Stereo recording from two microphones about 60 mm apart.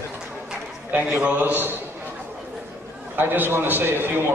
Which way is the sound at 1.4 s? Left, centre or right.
Right.